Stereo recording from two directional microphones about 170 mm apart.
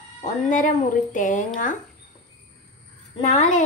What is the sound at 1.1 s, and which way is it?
Speech, 50° left (ahead or behind).